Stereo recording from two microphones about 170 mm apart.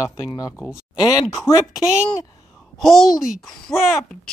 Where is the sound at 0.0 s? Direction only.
20° left (ahead or behind).